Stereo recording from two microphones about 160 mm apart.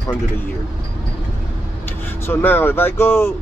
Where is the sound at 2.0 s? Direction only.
10° left (ahead or behind).